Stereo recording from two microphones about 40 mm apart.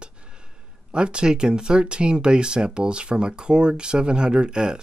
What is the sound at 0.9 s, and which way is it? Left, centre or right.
Speech, right.